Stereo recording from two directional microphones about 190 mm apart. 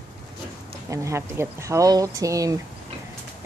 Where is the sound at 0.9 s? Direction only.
15° right (ahead or behind).